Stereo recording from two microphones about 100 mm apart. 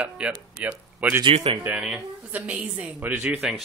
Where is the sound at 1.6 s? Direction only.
10° right (ahead or behind).